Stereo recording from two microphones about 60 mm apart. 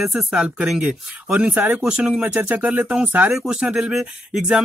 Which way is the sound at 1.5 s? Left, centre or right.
Right.